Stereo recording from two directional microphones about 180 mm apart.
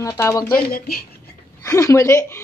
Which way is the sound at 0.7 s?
60° left (ahead or behind).